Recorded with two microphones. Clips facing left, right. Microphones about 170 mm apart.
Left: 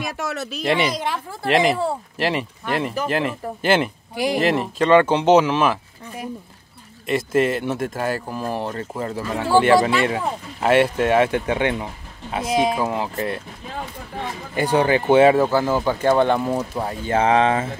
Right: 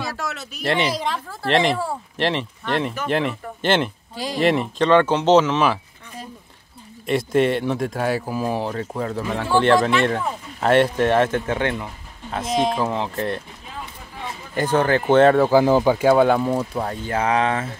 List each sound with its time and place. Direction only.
0.0 s a sound: 20° left (ahead or behind)
0.9 s speech: 10° left (ahead or behind)
4.4 s speech: centre (ahead or behind)
14.5 s speech: 10° left (ahead or behind)
15.5 s speech: 15° right (ahead or behind); by 16.9 s centre (ahead or behind)
17.1 s speech: 25° left (ahead or behind)